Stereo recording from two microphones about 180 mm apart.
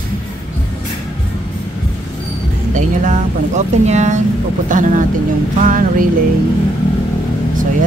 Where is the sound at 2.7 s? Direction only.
40° right (ahead or behind).